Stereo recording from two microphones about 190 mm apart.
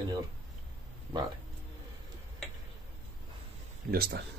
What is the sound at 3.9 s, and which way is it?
Speech, 55° right (ahead or behind).